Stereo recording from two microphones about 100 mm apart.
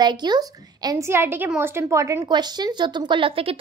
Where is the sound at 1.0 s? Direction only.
25° right (ahead or behind).